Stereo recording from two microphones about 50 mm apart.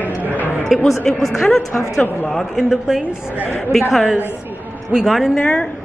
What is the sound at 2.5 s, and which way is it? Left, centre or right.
Speech, centre.